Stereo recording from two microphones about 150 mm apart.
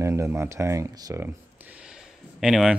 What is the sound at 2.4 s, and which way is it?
Speech, 5° right (ahead or behind).